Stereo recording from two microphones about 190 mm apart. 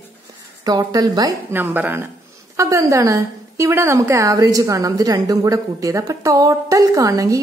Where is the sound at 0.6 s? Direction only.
20° right (ahead or behind).